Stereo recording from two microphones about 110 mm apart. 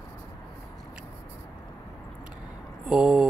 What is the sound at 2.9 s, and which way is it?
Speech, 5° right (ahead or behind).